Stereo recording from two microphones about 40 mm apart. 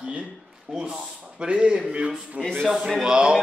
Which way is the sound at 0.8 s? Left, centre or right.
Right.